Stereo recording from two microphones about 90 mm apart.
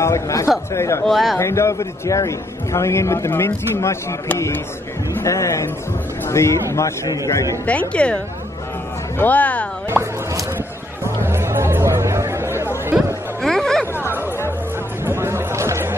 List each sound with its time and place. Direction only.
0.0 s a man's voice: 35° left (ahead or behind)
1.0 s speech: centre (ahead or behind)
1.4 s a man's voice: 30° left (ahead or behind)
5.2 s a man's voice: 35° left (ahead or behind)
7.6 s speech: 15° left (ahead or behind)
9.2 s speech: 15° left (ahead or behind)
11.2 s chatter: 30° right (ahead or behind)
13.4 s a sound: 5° left (ahead or behind)
15.0 s music: 30° right (ahead or behind)